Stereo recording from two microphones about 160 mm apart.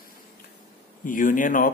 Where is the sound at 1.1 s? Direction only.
55° left (ahead or behind).